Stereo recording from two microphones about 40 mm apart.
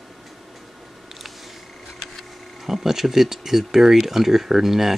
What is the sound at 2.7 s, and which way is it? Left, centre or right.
Speech, centre.